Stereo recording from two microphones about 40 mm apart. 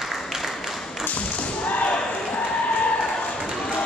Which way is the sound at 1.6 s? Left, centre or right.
Left.